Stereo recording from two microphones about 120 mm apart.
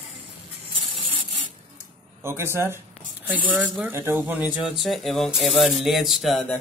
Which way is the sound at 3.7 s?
15° right (ahead or behind).